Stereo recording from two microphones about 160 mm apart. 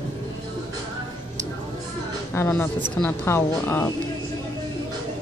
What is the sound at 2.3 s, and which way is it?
A woman's voice, 15° left (ahead or behind).